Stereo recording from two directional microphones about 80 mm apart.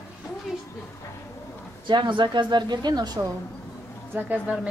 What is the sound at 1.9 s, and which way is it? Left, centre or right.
Speech, right.